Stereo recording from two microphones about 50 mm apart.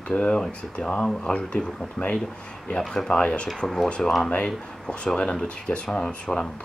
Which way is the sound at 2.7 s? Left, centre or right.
Centre.